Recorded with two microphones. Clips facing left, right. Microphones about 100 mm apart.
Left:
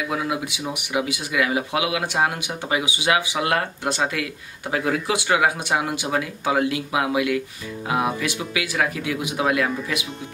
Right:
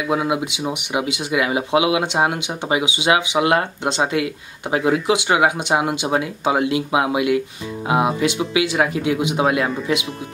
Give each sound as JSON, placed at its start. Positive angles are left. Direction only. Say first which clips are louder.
{"t": 0.0, "sound": "speech", "louder": "right 5 dB", "side_deg": -20}